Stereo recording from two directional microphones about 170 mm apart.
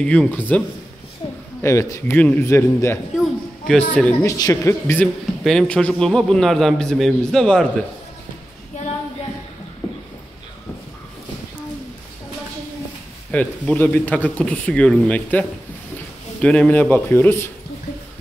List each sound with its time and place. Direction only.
0.0 s speech: 5° left (ahead or behind)
1.2 s a sound: 25° left (ahead or behind)
1.6 s speech: 15° left (ahead or behind)
4.3 s speech: 20° left (ahead or behind)
5.0 s a man's voice: 5° left (ahead or behind)
13.3 s speech: 10° left (ahead or behind)